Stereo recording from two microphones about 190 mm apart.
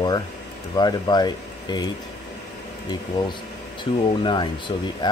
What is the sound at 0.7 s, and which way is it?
Speech, 20° left (ahead or behind).